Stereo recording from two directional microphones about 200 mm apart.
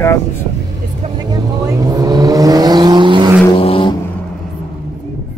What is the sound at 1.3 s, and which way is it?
Vehicle, 15° right (ahead or behind).